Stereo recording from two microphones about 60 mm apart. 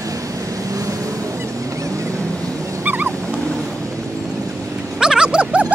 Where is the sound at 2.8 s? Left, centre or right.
Right.